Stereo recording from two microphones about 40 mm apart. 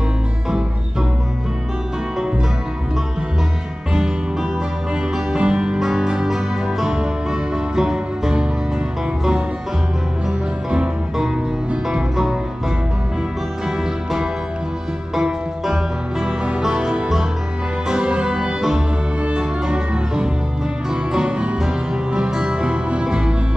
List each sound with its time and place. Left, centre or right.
3.9 s music: centre
11.9 s music: centre
15.6 s music: centre